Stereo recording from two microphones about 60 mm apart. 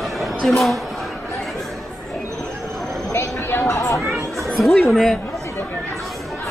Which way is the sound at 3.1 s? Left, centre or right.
Left.